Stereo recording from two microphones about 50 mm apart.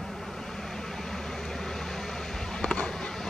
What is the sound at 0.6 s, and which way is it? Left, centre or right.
Vehicle, centre.